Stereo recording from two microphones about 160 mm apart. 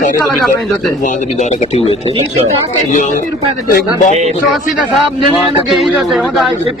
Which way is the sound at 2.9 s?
55° left (ahead or behind).